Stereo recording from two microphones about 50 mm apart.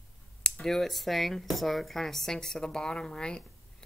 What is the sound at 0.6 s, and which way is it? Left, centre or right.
Speech, centre.